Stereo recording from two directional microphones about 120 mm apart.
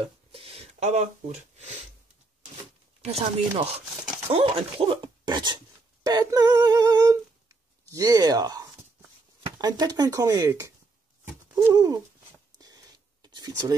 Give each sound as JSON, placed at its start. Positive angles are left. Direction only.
{"t": 0.3, "sound": "speech", "side_deg": -50}
{"t": 3.0, "sound": "speech", "side_deg": -60}
{"t": 6.0, "sound": "humming", "side_deg": -30}
{"t": 9.6, "sound": "speech", "side_deg": -35}
{"t": 12.5, "sound": "a sound", "side_deg": -35}